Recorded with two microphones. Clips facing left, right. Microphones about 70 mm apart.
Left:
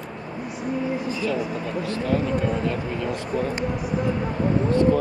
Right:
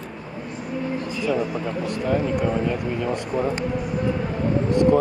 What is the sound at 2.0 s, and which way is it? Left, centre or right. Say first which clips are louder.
Speech: right 2 dB; centre.